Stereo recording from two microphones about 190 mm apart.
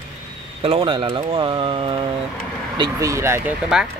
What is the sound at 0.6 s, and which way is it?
Speech, 30° right (ahead or behind).